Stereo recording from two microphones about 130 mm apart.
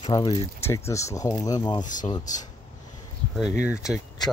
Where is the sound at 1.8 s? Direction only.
75° left (ahead or behind).